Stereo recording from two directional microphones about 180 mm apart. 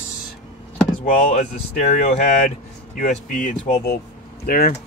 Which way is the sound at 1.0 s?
45° left (ahead or behind).